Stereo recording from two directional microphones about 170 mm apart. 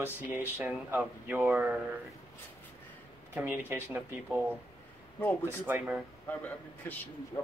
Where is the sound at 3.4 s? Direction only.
10° right (ahead or behind).